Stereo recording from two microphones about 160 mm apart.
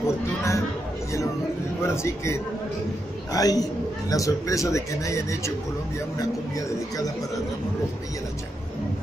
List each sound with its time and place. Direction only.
0.0 s a man's voice: 20° left (ahead or behind)
1.8 s a man's voice: 15° left (ahead or behind)